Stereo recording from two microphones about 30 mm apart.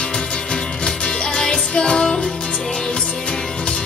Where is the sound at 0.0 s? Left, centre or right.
Left.